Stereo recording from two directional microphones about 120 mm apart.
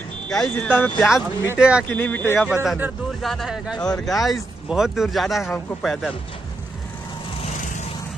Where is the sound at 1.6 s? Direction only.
10° right (ahead or behind).